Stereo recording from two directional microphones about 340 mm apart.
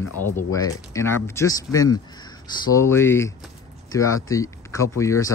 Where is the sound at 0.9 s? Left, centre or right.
Centre.